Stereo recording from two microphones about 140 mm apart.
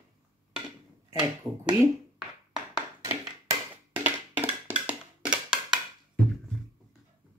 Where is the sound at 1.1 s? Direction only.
25° right (ahead or behind).